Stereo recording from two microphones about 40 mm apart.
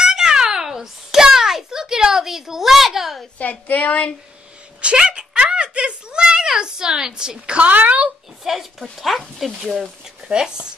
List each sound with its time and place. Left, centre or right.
0.0 s a sound: centre
3.3 s a woman's voice: left
4.9 s a sound: centre
7.7 s speech: right
8.5 s speech: centre
10.2 s speech: right